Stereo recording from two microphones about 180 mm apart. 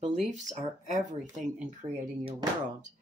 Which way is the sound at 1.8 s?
10° right (ahead or behind).